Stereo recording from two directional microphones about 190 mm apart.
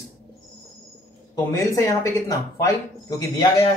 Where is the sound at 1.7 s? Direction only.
15° left (ahead or behind).